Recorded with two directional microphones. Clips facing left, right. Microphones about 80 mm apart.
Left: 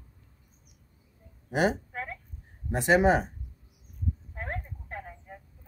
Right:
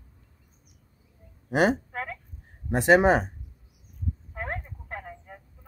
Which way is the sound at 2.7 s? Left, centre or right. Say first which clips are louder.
Right 3 dB; right.